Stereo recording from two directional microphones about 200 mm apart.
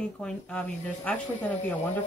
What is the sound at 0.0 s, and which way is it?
Speech, 5° left (ahead or behind).